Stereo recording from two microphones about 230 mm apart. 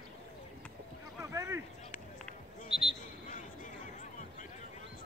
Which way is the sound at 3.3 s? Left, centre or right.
Left.